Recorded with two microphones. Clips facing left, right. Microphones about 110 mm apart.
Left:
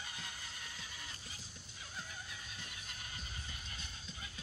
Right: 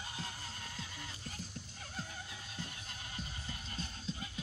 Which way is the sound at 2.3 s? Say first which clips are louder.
Right 4 dB; 35° right (ahead or behind).